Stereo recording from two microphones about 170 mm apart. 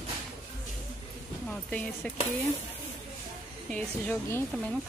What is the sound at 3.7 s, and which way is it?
Speech, 10° left (ahead or behind).